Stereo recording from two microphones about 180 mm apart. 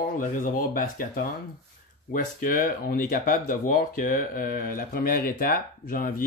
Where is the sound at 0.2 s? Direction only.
50° left (ahead or behind).